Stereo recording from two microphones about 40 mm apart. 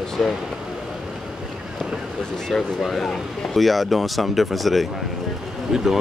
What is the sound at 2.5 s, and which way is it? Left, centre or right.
Speech, centre.